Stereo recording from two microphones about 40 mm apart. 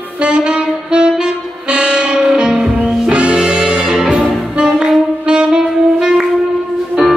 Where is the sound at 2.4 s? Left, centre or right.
Centre.